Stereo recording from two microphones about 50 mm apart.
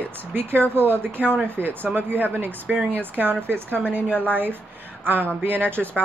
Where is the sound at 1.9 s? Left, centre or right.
Right.